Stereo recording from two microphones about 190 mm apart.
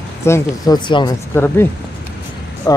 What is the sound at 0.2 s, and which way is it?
Speech, 15° left (ahead or behind).